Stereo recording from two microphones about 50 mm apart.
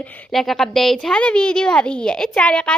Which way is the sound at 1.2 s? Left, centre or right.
Left.